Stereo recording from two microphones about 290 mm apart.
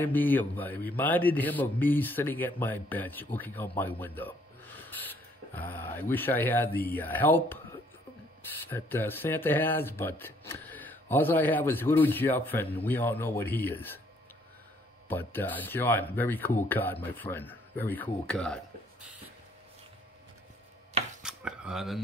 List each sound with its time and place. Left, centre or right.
0.0 s a man's voice: centre
8.6 s a man's voice: centre
15.0 s a man's voice: centre
21.2 s a sound: centre